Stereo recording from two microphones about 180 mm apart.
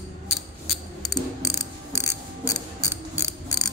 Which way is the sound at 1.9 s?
20° left (ahead or behind).